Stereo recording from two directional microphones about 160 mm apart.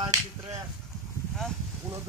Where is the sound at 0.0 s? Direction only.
20° right (ahead or behind).